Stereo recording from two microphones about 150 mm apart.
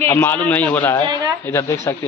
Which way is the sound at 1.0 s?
30° right (ahead or behind).